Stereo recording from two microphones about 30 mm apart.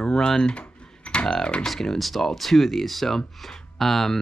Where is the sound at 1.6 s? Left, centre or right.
Centre.